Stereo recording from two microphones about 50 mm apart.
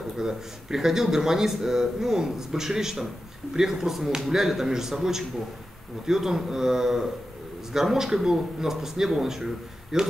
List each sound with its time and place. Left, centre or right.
0.2 s speech: centre